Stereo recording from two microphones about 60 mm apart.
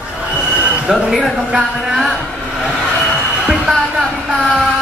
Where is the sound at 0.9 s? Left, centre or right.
Centre.